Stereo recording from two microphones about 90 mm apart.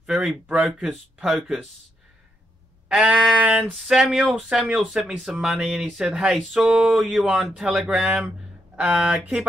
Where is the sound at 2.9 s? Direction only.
10° right (ahead or behind).